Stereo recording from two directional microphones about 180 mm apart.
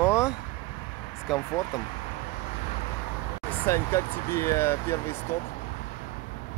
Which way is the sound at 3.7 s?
15° left (ahead or behind).